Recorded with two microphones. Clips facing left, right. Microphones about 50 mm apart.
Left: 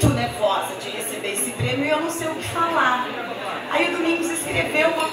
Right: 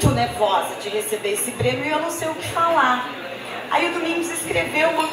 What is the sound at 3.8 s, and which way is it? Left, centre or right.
Speech, left.